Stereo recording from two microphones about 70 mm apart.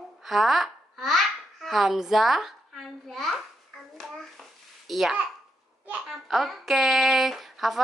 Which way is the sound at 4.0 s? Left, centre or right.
Centre.